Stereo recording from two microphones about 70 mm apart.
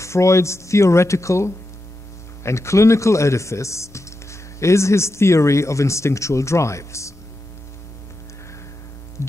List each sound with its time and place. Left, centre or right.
0.0 s speech: left